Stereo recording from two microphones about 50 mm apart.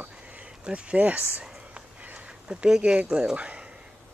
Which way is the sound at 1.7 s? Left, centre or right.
Right.